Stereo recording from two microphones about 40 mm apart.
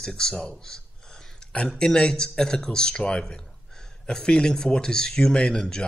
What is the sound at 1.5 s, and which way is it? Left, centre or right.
Speech, left.